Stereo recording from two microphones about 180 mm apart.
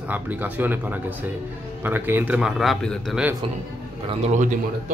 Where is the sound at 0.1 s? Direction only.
10° right (ahead or behind).